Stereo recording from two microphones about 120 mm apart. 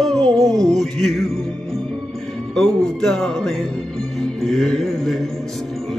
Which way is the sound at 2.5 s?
5° left (ahead or behind).